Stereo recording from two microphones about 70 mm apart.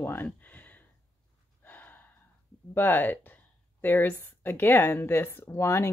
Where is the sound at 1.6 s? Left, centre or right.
Left.